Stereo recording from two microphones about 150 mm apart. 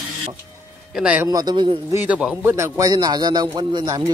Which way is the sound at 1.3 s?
25° right (ahead or behind).